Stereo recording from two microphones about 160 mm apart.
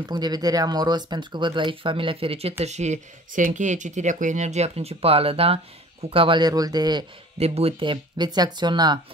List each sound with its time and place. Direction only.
0.0 s speech: 25° right (ahead or behind)
7.3 s speech: 40° right (ahead or behind)